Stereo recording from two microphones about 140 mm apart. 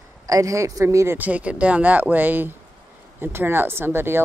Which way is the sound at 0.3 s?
25° right (ahead or behind).